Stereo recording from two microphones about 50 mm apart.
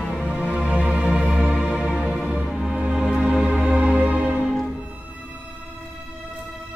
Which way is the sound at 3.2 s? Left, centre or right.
Right.